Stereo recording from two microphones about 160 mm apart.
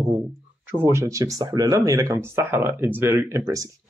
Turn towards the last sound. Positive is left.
turn(degrees=-15)  # may be behind; listen again after turning